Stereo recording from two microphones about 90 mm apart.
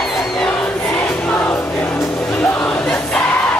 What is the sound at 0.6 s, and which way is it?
Music, 20° left (ahead or behind).